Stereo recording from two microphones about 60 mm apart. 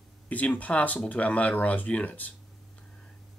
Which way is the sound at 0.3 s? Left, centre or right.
Left.